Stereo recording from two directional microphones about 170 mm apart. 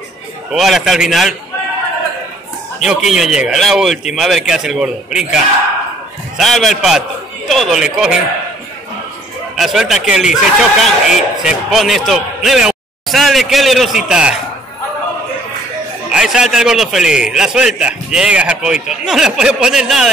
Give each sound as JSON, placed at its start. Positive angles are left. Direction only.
{"t": 0.5, "sound": "a man's voice", "side_deg": 0}
{"t": 2.8, "sound": "a man's voice", "side_deg": 0}
{"t": 9.6, "sound": "a man's voice", "side_deg": 0}
{"t": 16.1, "sound": "a man's voice", "side_deg": -5}